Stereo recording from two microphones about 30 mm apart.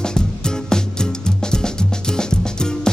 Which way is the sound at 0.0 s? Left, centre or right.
Left.